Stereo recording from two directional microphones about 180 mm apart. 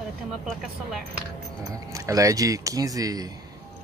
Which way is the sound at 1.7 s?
20° right (ahead or behind).